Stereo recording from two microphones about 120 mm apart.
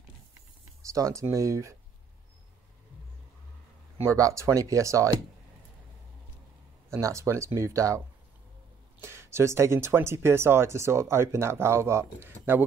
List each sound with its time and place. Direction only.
0.8 s speech: 25° right (ahead or behind)
4.0 s speech: 25° right (ahead or behind)
6.9 s speech: 25° right (ahead or behind)
9.0 s speech: 20° right (ahead or behind)